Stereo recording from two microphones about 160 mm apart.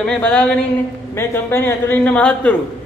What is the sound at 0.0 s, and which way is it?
A man's voice, 5° left (ahead or behind).